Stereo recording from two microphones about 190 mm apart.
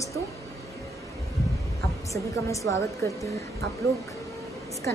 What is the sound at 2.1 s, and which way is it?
Speech, 15° left (ahead or behind).